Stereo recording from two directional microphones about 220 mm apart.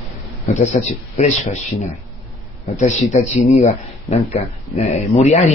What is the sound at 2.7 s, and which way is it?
Speech, 30° left (ahead or behind).